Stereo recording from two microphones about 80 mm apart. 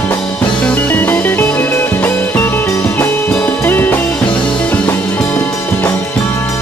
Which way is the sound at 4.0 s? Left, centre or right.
Centre.